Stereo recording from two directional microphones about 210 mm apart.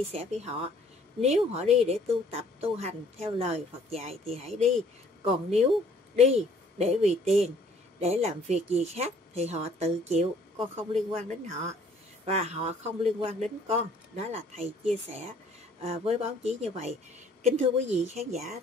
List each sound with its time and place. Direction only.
0.1 s a man's voice: 30° right (ahead or behind)